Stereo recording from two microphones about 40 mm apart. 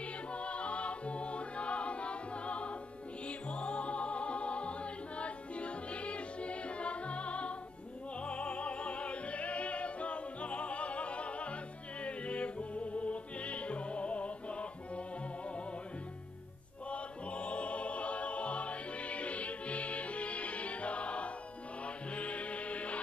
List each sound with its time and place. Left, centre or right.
0.3 s music: left
16.9 s music: left